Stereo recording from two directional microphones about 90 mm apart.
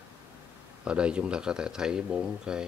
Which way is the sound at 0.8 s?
10° right (ahead or behind).